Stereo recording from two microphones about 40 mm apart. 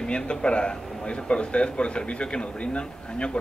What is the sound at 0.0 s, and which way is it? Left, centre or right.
Speech, left.